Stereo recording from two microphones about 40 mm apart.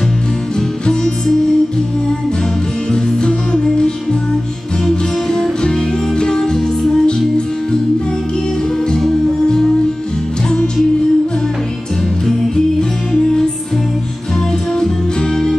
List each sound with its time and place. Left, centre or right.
0.6 s music: centre
2.9 s music: centre
9.0 s music: centre